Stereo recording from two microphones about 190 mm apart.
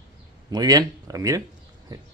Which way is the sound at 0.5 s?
20° right (ahead or behind).